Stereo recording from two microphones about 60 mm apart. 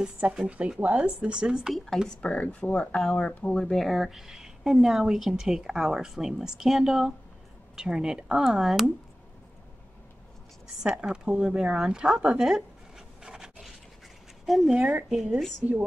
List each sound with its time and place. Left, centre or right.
0.0 s a woman's voice: centre
2.2 s speech: left
3.7 s a woman's voice: centre
10.8 s a woman's voice: centre
13.2 s rub: centre
14.4 s speech: centre
15.6 s a woman's voice: right